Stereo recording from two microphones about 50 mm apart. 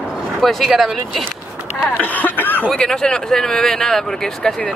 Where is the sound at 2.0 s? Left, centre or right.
Left.